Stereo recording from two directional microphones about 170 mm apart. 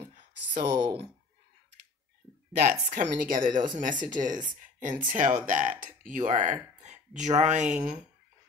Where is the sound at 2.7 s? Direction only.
50° right (ahead or behind).